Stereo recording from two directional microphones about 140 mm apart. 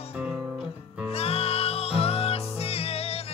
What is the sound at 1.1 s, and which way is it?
Music, 45° left (ahead or behind).